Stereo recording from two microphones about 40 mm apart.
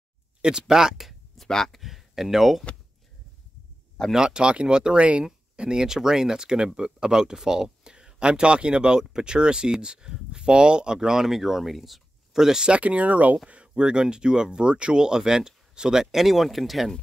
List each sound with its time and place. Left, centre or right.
0.4 s speech: centre
1.4 s speech: centre
1.8 s speech: centre
4.1 s speech: right
5.2 s speech: centre
12.6 s speech: right
13.5 s speech: right; by 16.9 s centre